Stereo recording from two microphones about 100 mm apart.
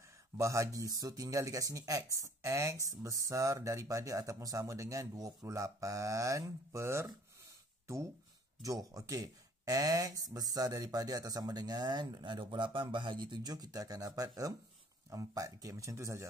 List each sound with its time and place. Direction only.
0.4 s speech: 30° right (ahead or behind)
7.8 s a sound: 30° right (ahead or behind)
8.6 s speech: 35° right (ahead or behind)